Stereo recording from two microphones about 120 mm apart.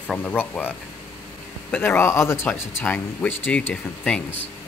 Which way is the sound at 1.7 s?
15° left (ahead or behind).